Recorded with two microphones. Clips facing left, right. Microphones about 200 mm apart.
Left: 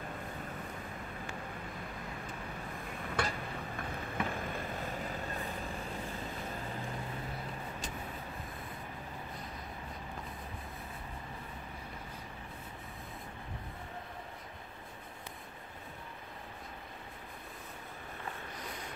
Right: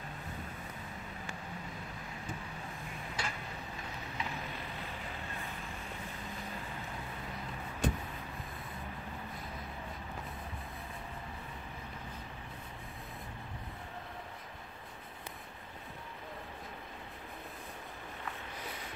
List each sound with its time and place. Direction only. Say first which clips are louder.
3.2 s tick-tock: left 6 dB; 55° left (ahead or behind)
3.7 s boat: left 6 dB; 55° left (ahead or behind)
7.8 s vehicle: right 15 dB; 60° right (ahead or behind)